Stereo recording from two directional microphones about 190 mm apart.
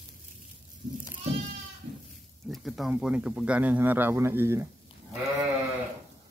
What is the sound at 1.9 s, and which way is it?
Goat, 40° right (ahead or behind).